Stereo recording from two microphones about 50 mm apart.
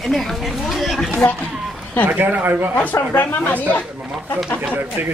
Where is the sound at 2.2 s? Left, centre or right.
Right.